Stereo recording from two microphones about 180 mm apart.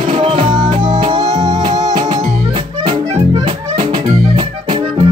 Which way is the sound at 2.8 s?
30° right (ahead or behind).